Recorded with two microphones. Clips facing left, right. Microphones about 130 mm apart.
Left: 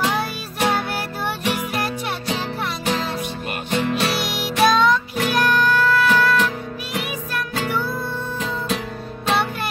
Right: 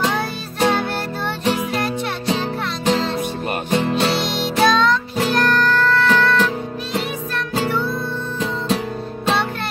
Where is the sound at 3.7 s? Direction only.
30° right (ahead or behind).